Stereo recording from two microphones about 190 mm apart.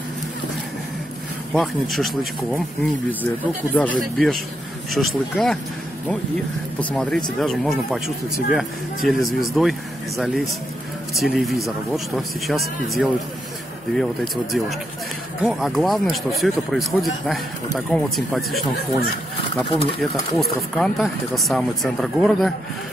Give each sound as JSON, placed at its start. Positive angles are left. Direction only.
{"t": 1.5, "sound": "speech", "side_deg": 0}
{"t": 3.7, "sound": "speech", "side_deg": 10}
{"t": 6.8, "sound": "speech", "side_deg": 5}
{"t": 19.5, "sound": "speech", "side_deg": 30}
{"t": 20.0, "sound": "speech", "side_deg": 0}